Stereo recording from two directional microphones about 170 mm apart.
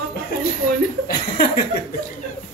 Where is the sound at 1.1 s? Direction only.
60° left (ahead or behind).